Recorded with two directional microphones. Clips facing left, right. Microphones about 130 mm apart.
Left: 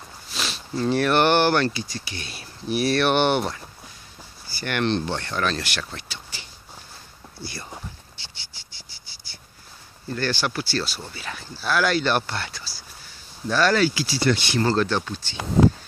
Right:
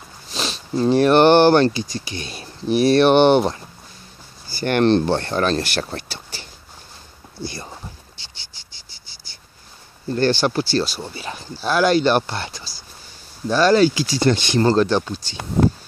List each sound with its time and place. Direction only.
0.5 s speech: 20° right (ahead or behind)
4.6 s speech: 35° right (ahead or behind)
7.4 s speech: 20° right (ahead or behind)
10.0 s speech: 30° right (ahead or behind); by 15.2 s 15° right (ahead or behind)
15.2 s speech: 45° right (ahead or behind)